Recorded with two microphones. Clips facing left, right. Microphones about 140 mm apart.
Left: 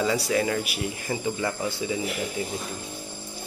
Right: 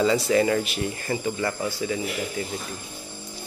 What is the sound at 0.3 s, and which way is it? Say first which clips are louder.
Speech: right 4 dB; centre (ahead or behind).